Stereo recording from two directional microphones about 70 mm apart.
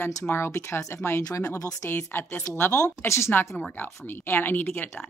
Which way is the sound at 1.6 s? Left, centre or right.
Left.